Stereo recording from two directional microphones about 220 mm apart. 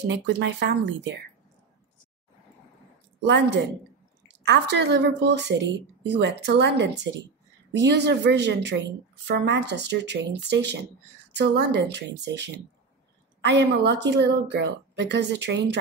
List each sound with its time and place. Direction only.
0.0 s a woman's voice: 50° right (ahead or behind)
3.2 s a woman's voice: 50° right (ahead or behind)